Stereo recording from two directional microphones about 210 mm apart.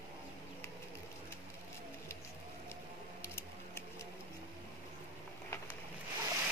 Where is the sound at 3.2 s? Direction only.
10° left (ahead or behind).